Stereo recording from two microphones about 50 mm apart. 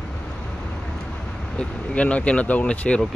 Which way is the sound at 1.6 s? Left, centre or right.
Left.